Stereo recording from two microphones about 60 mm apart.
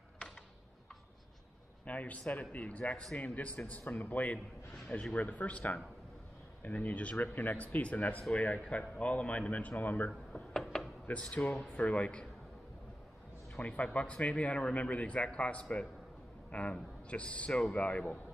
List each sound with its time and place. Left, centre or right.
1.9 s a man's voice: left
2.9 s speech: centre
3.3 s a man's voice: left
10.3 s a sound: centre
11.1 s a man's voice: left
13.6 s a man's voice: left
16.7 s a man's voice: centre
17.5 s speech: centre
17.7 s a man's voice: left